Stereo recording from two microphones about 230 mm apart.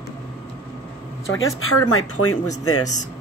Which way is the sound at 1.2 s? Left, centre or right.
Left.